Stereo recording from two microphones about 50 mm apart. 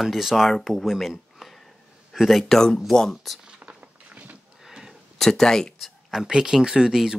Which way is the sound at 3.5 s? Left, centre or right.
Right.